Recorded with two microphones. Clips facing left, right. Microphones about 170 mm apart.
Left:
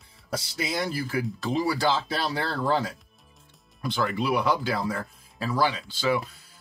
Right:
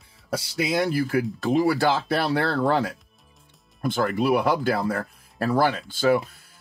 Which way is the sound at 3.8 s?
50° right (ahead or behind).